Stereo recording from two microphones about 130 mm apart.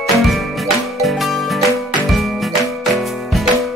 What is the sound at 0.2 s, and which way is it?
Music, centre (ahead or behind).